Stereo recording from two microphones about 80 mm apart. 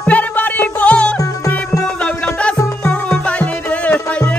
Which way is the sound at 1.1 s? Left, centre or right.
Left.